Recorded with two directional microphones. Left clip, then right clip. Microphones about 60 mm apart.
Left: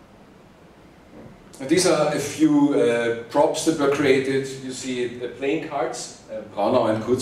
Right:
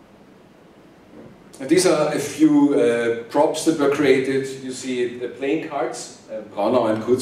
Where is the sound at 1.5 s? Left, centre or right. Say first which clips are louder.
Right 2 dB; centre.